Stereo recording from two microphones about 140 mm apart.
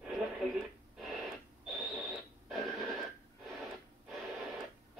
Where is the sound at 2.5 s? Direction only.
Centre (ahead or behind).